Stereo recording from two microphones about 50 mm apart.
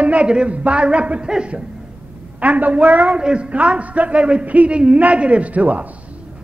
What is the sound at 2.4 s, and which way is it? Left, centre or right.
A man's voice, right.